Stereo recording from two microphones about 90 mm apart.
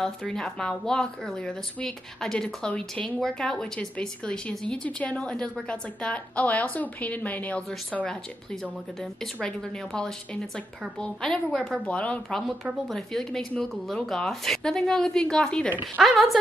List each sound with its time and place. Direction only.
0.0 s a woman's voice: 5° left (ahead or behind)